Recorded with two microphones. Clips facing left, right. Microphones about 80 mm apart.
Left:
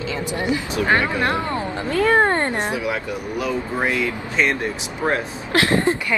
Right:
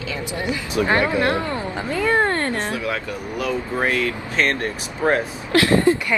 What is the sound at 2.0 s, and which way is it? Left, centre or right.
A woman's voice, left.